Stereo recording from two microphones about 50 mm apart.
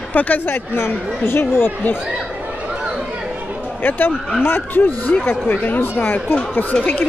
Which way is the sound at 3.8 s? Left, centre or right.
Left.